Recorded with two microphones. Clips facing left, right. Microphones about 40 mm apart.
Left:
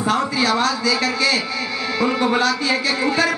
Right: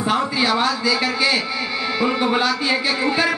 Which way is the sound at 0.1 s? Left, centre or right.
Centre.